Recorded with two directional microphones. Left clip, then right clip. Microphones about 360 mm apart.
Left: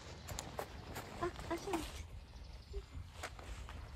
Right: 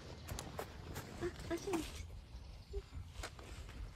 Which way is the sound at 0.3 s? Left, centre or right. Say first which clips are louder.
Left 2 dB; left.